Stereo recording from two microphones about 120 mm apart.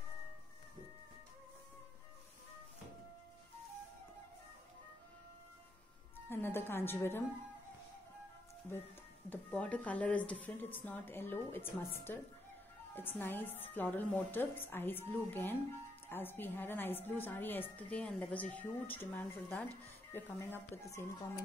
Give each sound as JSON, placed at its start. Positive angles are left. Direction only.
{"t": 6.2, "sound": "a woman's voice", "side_deg": 20}
{"t": 9.3, "sound": "a woman's voice", "side_deg": 10}
{"t": 13.2, "sound": "a woman's voice", "side_deg": 15}